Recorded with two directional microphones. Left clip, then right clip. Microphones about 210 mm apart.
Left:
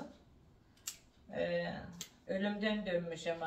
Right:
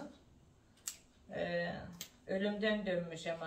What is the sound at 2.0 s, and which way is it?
Speech, 15° right (ahead or behind).